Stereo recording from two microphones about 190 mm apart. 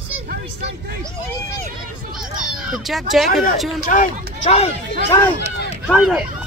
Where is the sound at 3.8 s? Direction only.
45° left (ahead or behind).